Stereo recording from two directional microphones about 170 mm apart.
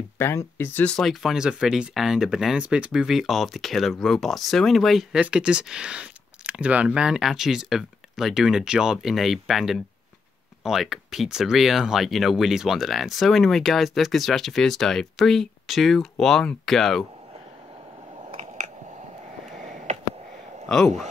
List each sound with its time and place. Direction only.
0.2 s speech: 15° left (ahead or behind)
18.3 s a sound: 45° right (ahead or behind)
20.6 s speech: 5° left (ahead or behind)